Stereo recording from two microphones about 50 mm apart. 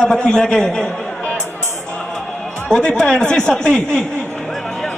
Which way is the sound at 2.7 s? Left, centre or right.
Centre.